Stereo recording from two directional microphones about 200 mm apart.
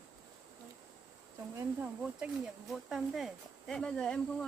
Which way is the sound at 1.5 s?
5° right (ahead or behind).